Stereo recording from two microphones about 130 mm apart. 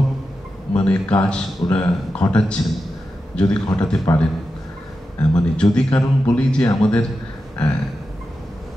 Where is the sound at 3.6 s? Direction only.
30° left (ahead or behind).